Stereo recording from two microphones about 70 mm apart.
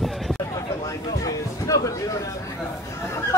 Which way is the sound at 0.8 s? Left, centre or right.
Left.